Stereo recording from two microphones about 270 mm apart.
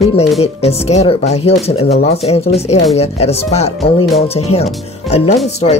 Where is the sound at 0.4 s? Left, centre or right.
Left.